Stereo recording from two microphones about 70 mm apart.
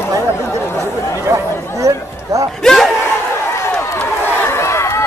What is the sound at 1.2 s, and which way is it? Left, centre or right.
Chatter, right.